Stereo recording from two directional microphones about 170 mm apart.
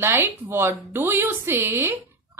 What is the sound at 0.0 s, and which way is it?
A woman's voice, 15° right (ahead or behind).